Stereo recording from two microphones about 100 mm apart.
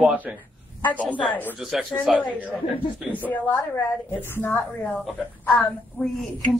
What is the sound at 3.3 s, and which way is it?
A woman's voice, 15° left (ahead or behind).